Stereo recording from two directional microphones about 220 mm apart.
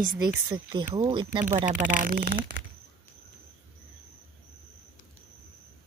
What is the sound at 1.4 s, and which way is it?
A woman's voice, 35° right (ahead or behind).